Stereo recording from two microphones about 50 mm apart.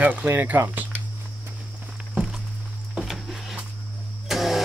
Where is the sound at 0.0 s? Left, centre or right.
Right.